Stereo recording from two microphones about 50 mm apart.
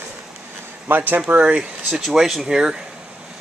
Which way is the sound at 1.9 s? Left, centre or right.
Centre.